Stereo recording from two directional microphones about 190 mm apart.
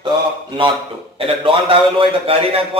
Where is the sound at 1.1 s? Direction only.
30° right (ahead or behind).